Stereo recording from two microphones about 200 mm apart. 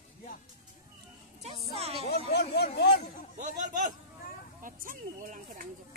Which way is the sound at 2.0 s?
55° left (ahead or behind).